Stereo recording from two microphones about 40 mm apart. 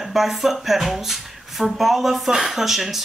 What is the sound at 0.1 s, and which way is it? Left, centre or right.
Speech, centre.